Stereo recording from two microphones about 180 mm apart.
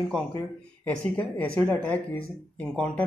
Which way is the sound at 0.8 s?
10° left (ahead or behind).